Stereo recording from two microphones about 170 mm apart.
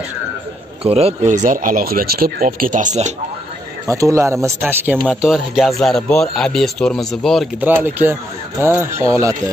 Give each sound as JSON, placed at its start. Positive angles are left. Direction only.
{"t": 0.8, "sound": "speech", "side_deg": -35}
{"t": 3.8, "sound": "speech", "side_deg": -20}
{"t": 7.6, "sound": "speech", "side_deg": -10}